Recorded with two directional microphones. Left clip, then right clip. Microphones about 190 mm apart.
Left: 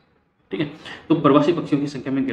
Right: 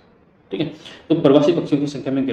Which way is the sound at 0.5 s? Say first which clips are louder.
Right 1 dB; centre (ahead or behind).